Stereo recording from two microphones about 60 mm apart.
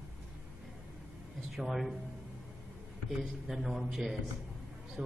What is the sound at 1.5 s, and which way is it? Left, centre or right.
Speech, centre.